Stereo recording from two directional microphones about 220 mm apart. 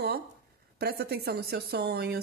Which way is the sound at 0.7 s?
45° right (ahead or behind).